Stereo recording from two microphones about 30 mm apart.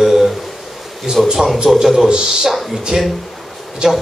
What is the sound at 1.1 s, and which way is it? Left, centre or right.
Speech, right.